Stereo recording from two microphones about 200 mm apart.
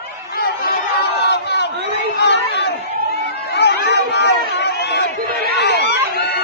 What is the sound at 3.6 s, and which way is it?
Chatter, 55° left (ahead or behind).